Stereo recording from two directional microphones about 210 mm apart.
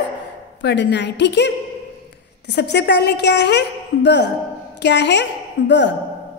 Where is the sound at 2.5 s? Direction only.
55° left (ahead or behind).